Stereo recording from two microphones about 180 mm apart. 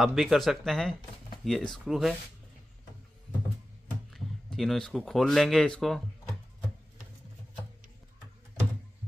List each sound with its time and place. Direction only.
0.0 s speech: centre (ahead or behind)
4.1 s speech: centre (ahead or behind)